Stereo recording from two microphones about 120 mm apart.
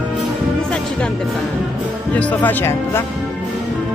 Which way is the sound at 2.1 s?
15° left (ahead or behind).